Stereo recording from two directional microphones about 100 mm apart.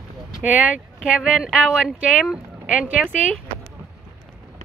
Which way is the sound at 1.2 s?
5° right (ahead or behind).